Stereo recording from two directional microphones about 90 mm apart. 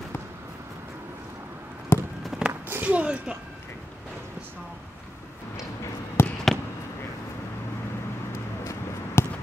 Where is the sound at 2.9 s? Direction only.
15° right (ahead or behind).